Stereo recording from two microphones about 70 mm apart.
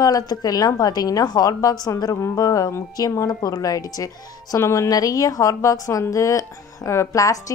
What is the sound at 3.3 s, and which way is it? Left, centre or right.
A woman's voice, left.